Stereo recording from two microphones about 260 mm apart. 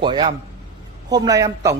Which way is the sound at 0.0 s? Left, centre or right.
Centre.